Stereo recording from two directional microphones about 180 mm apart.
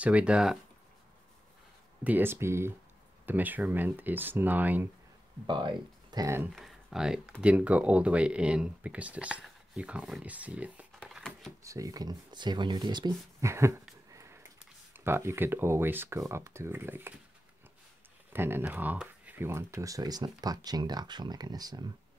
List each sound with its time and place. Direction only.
0.0 s speech: 5° right (ahead or behind)
2.0 s speech: 10° right (ahead or behind)
5.5 s speech: 25° right (ahead or behind)
6.5 s speech: centre (ahead or behind)
11.6 s speech: 15° right (ahead or behind)
14.1 s a sound: 15° right (ahead or behind)
15.0 s speech: 15° right (ahead or behind)
18.3 s speech: 10° right (ahead or behind)